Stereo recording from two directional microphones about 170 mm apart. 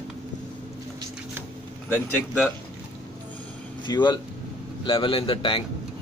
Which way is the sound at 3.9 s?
25° left (ahead or behind).